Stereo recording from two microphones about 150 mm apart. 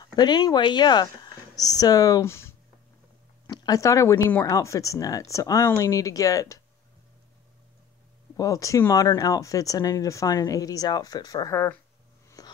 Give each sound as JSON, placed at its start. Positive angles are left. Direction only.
{"t": 0.0, "sound": "speech", "side_deg": 30}
{"t": 3.4, "sound": "speech", "side_deg": 25}
{"t": 8.4, "sound": "speech", "side_deg": 20}
{"t": 11.5, "sound": "speech", "side_deg": 15}
{"t": 12.4, "sound": "a sound", "side_deg": 25}